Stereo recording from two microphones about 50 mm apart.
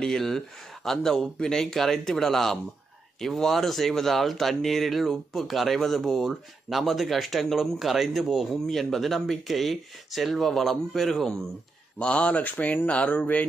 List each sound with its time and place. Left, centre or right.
0.0 s speech: centre
8.5 s speech: centre
12.0 s speech: left